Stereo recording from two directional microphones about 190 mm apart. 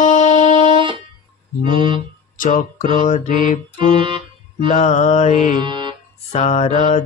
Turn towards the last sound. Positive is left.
turn(degrees=40)  # may be behind; listen again after turning